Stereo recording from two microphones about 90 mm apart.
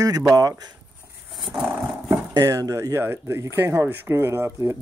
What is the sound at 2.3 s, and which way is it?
Speech, 40° right (ahead or behind).